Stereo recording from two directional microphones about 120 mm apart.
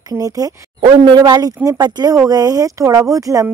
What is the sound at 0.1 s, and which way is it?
Speech, 30° right (ahead or behind).